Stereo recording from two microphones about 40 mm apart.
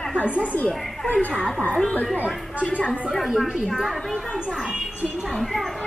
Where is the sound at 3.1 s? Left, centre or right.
Centre.